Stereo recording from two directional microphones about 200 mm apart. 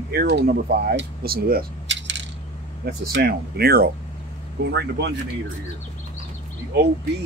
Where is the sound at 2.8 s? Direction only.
55° right (ahead or behind).